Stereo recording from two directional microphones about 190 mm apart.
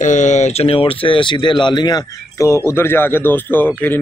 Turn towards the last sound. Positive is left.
turn(degrees=10)  # may be behind; listen again after turning